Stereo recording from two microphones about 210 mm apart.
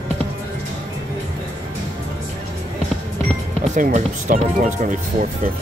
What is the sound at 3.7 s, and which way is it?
Speech, 35° right (ahead or behind).